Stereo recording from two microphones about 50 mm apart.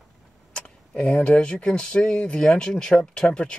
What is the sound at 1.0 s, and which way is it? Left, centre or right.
Speech, centre.